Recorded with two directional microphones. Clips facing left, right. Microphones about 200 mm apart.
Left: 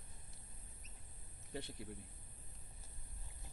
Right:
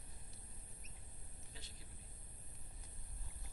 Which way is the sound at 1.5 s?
65° left (ahead or behind).